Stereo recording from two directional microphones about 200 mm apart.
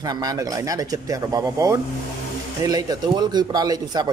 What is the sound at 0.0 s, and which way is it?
A man's voice, 20° right (ahead or behind).